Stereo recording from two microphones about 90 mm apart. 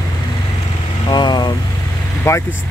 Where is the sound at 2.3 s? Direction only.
30° left (ahead or behind).